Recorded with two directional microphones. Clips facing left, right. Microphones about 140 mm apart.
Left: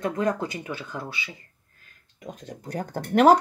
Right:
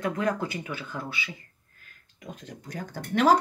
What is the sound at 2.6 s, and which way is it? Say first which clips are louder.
Speech: left 7 dB; 55° left (ahead or behind).